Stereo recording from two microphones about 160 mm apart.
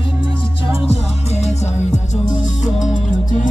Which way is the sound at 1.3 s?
45° left (ahead or behind).